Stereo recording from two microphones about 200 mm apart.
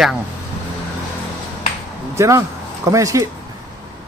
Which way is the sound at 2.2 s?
15° right (ahead or behind).